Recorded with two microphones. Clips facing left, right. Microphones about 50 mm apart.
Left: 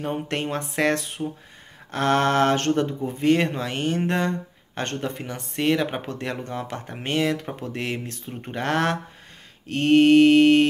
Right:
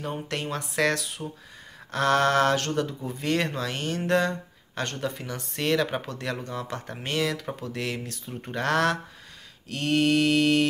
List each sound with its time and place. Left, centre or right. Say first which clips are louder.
0.0 s speech: left 4 dB; left